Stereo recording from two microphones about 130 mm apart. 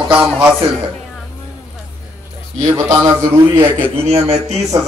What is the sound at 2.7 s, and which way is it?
Speech, 25° right (ahead or behind).